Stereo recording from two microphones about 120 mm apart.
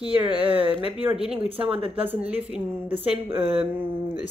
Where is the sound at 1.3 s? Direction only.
55° right (ahead or behind).